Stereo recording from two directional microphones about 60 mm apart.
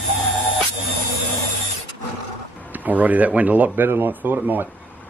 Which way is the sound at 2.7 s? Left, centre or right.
Right.